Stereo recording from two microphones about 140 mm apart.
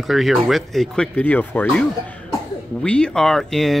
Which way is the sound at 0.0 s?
Centre (ahead or behind).